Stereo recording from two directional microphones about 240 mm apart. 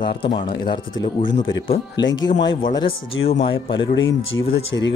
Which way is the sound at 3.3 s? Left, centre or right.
Left.